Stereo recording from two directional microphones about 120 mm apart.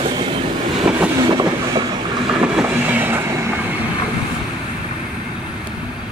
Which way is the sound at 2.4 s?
10° right (ahead or behind).